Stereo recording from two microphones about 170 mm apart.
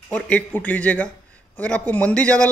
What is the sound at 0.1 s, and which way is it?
A man's voice, 10° left (ahead or behind).